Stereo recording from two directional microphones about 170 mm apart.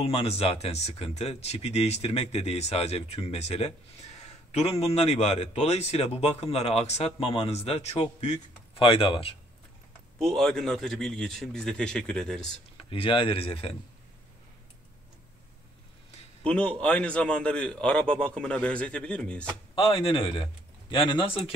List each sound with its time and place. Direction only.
0.0 s a man's voice: 35° left (ahead or behind)
10.2 s a man's voice: 5° left (ahead or behind)
12.9 s a man's voice: 30° left (ahead or behind)
16.4 s a man's voice: 5° left (ahead or behind)
19.7 s a man's voice: 35° left (ahead or behind)